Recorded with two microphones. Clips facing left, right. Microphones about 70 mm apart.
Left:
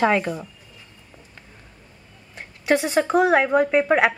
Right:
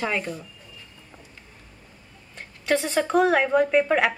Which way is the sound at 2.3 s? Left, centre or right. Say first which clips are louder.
Left 3 dB; centre.